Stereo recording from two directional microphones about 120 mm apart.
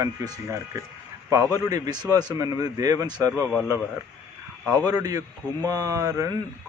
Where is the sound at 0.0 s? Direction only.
25° right (ahead or behind).